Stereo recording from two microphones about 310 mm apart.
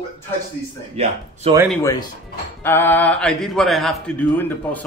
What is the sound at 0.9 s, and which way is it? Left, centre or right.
Speech, centre.